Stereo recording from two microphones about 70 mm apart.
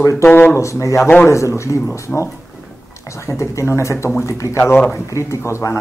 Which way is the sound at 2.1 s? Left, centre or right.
Centre.